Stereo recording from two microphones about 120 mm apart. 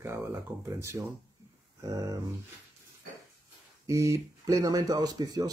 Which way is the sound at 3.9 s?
25° right (ahead or behind).